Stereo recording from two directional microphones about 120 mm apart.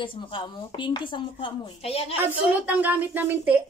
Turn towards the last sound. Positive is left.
turn(degrees=-15)  # may be behind; listen again after turning